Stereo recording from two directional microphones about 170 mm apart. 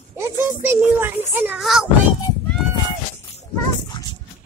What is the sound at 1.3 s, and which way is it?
Speech, 10° right (ahead or behind).